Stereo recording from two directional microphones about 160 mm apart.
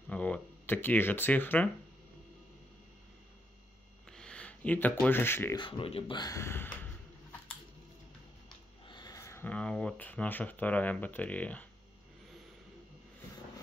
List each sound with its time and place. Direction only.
0.1 s speech: 10° left (ahead or behind)
4.1 s speech: 5° left (ahead or behind)
5.6 s speech: 35° left (ahead or behind); by 6.9 s 15° left (ahead or behind)
8.8 s speech: 25° left (ahead or behind); by 11.6 s 10° left (ahead or behind)